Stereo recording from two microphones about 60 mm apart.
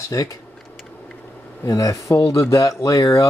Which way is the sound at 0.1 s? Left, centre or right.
Left.